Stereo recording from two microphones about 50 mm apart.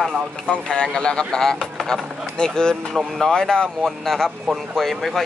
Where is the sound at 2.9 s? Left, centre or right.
Centre.